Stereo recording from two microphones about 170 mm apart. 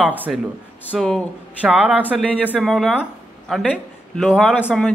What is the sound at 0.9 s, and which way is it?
Speech, centre (ahead or behind).